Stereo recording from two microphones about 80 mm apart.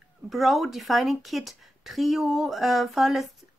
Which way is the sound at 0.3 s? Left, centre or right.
Centre.